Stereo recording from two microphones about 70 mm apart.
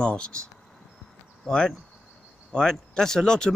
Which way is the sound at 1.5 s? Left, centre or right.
Centre.